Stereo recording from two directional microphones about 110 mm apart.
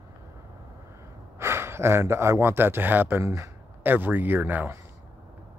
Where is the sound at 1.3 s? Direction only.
25° right (ahead or behind).